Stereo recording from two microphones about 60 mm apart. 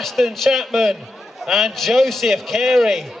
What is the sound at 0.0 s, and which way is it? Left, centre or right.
A man's voice, centre.